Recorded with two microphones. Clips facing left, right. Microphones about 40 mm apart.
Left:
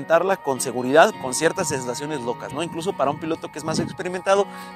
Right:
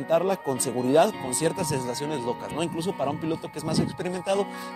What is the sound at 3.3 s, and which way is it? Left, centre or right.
Speech, left.